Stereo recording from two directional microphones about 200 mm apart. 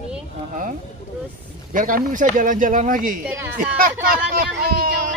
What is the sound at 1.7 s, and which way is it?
Speech, 45° right (ahead or behind).